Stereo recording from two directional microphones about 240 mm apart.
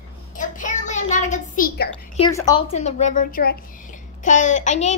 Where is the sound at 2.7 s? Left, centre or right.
Left.